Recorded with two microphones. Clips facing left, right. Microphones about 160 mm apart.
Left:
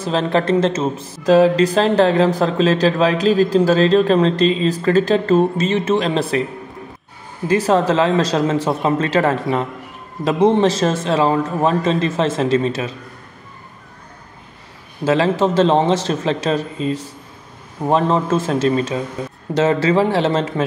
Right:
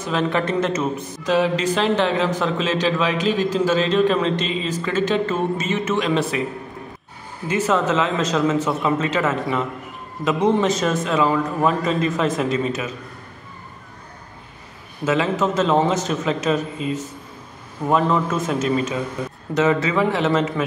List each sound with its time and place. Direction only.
0.0 s speech: 35° left (ahead or behind)
7.4 s speech: 35° left (ahead or behind)
15.0 s speech: 35° left (ahead or behind)